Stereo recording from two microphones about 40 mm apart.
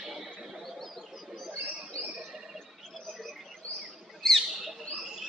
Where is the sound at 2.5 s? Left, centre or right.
Centre.